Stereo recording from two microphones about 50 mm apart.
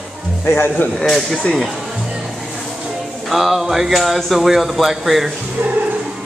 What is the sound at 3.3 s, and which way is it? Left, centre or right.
Speech, centre.